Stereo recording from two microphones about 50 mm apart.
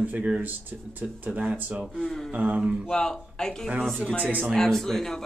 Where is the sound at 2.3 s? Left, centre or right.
Right.